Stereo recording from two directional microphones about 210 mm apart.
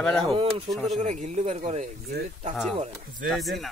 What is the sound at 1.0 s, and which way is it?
Speech, 35° right (ahead or behind).